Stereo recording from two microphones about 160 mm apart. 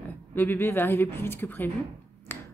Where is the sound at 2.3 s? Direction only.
15° left (ahead or behind).